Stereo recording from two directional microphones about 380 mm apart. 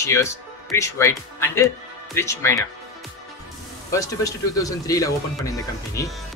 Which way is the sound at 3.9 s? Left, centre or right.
Centre.